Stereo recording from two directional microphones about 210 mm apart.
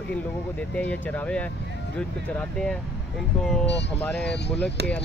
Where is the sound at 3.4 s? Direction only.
5° left (ahead or behind).